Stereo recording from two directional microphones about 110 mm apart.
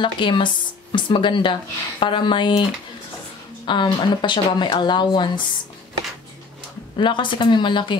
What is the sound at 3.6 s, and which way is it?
A woman's voice, 45° left (ahead or behind).